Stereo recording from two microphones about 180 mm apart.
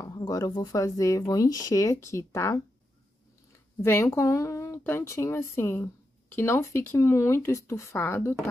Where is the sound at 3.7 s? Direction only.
10° left (ahead or behind).